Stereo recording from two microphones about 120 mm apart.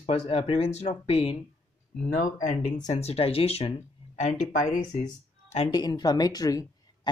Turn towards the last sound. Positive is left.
turn(degrees=35)  # may be behind; listen again after turning